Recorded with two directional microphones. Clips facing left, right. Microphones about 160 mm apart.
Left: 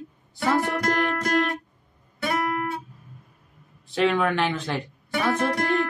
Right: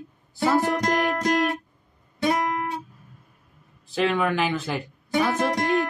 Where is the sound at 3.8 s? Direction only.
Centre (ahead or behind).